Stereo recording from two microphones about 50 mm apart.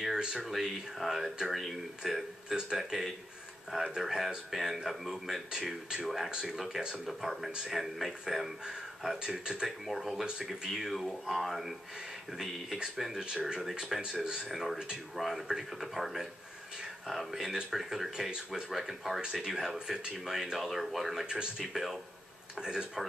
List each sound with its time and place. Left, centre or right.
0.2 s speech: centre
0.5 s speech: centre
9.8 s speech: centre
12.9 s speech: centre
13.2 s speech: centre
13.7 s speech: centre
14.5 s speech: centre
21.3 s speech: centre